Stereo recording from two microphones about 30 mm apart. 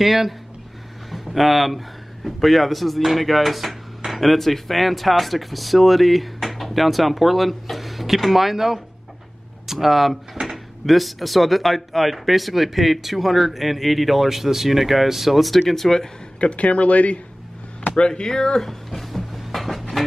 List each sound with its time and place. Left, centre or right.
0.0 s speech: centre
16.3 s speech: left
17.9 s speech: left
18.6 s a sound: centre